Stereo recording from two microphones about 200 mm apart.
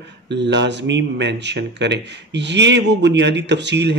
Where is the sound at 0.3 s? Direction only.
60° right (ahead or behind).